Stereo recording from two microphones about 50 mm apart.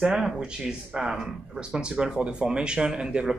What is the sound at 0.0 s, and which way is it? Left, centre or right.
Speech, centre.